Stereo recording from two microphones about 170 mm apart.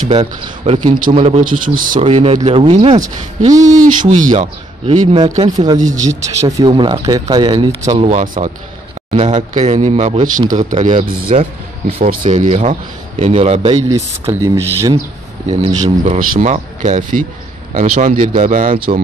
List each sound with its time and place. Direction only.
0.1 s speech: 40° right (ahead or behind)
1.1 s a man's voice: 35° right (ahead or behind)
1.4 s speech: 55° right (ahead or behind)
2.0 s a man's voice: 35° right (ahead or behind)
3.6 s speech: 50° right (ahead or behind)
4.8 s a man's voice: 35° right (ahead or behind)
5.8 s speech: 45° right (ahead or behind)
6.4 s a man's voice: 20° right (ahead or behind)
13.8 s speech: 20° right (ahead or behind)
16.0 s speech: 45° right (ahead or behind)